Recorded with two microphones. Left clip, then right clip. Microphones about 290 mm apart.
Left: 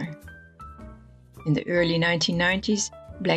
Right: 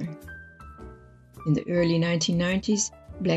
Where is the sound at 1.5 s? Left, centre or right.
Left.